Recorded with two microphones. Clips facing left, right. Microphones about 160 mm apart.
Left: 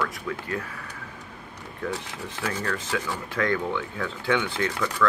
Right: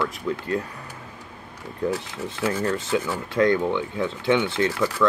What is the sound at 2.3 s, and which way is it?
Speech, 25° right (ahead or behind).